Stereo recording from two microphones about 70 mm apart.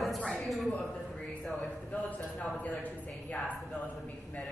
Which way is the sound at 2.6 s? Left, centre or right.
Left.